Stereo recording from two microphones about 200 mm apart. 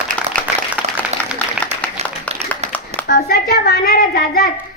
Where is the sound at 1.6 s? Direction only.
5° left (ahead or behind).